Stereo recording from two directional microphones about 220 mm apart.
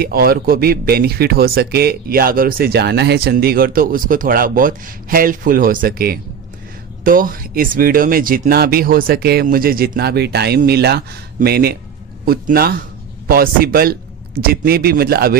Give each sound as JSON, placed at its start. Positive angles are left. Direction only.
{"t": 0.0, "sound": "speech", "side_deg": -45}